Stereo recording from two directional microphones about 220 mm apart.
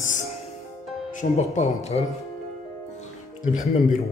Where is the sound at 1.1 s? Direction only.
30° left (ahead or behind).